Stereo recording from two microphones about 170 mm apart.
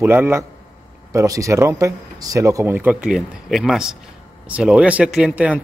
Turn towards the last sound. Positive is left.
turn(degrees=-10)  # may be behind; listen again after turning